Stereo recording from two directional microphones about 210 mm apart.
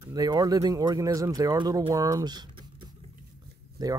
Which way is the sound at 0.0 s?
20° right (ahead or behind).